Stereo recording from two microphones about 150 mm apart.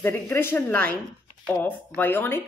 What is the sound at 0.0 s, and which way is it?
A woman's voice, 15° left (ahead or behind).